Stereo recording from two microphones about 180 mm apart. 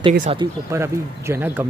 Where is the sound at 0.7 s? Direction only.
15° right (ahead or behind).